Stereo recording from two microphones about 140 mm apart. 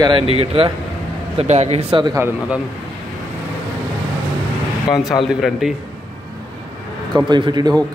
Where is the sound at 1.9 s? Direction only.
30° right (ahead or behind).